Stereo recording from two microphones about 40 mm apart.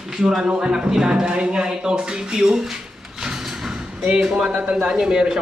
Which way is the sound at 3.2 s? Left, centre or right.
Centre.